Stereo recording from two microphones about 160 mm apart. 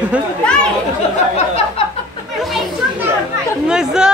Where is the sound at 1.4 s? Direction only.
40° left (ahead or behind).